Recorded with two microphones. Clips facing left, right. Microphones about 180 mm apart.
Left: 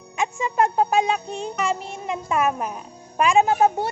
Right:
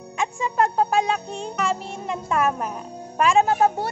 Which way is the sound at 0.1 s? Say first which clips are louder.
Left 1 dB; 5° left (ahead or behind).